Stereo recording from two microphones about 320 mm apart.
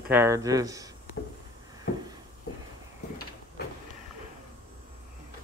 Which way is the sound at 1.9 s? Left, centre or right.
Left.